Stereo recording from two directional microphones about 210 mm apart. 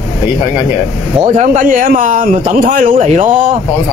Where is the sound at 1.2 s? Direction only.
35° right (ahead or behind).